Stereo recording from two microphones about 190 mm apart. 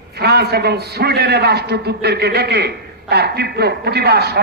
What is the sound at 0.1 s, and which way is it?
A man's voice, 55° right (ahead or behind).